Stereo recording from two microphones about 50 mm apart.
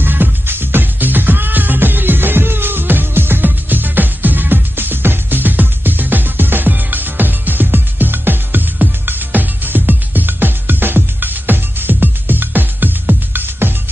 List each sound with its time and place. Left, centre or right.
0.0 s music: right